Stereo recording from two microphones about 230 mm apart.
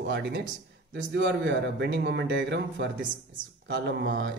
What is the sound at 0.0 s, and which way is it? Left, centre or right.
Speech, right.